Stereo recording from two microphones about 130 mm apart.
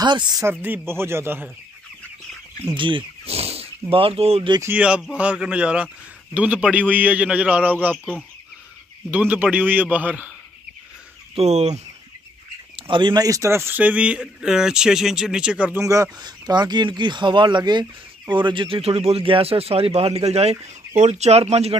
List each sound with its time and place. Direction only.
0.0 s speech: 35° right (ahead or behind)
0.5 s a man's voice: 15° right (ahead or behind)
2.7 s speech: 40° right (ahead or behind)
3.3 s a sound: 50° right (ahead or behind)
3.9 s speech: 45° right (ahead or behind)
4.6 s speech: 15° right (ahead or behind)
9.1 s speech: 15° right (ahead or behind)
11.3 s speech: 60° right (ahead or behind)
12.7 s speech: 40° right (ahead or behind); by 15.8 s 10° right (ahead or behind)
15.8 s speech: 25° right (ahead or behind); by 21.7 s 50° right (ahead or behind)